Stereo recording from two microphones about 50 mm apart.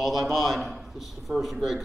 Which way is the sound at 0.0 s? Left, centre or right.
Centre.